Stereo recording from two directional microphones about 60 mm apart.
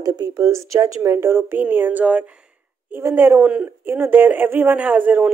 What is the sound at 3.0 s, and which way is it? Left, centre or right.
Speech, right.